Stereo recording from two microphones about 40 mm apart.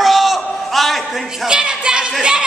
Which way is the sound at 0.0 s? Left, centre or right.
Centre.